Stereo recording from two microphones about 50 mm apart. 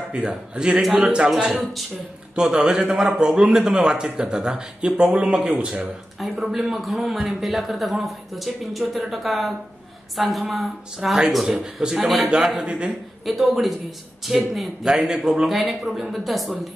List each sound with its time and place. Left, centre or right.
0.1 s a man's voice: centre
1.5 s a man's voice: centre
2.3 s a man's voice: centre
6.1 s a man's voice: centre
12.6 s a man's voice: centre
13.2 s a man's voice: centre